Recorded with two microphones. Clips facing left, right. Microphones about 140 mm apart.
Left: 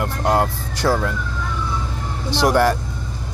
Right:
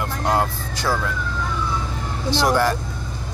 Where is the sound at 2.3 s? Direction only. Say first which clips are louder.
Left 2 dB; 65° left (ahead or behind).